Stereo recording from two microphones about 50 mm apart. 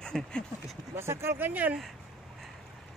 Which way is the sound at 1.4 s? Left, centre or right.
Right.